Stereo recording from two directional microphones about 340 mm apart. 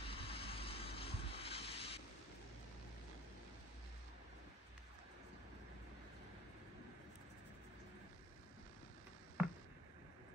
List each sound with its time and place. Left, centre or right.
0.0 s vehicle: centre